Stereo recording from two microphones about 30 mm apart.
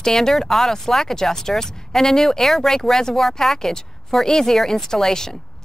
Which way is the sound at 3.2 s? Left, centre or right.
Centre.